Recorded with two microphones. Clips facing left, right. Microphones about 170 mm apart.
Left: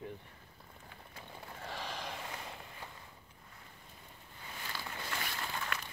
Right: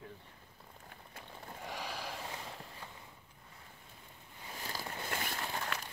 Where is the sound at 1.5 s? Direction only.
10° right (ahead or behind).